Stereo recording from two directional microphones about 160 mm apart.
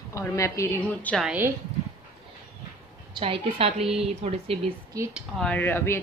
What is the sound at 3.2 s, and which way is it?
A woman's voice, 35° right (ahead or behind).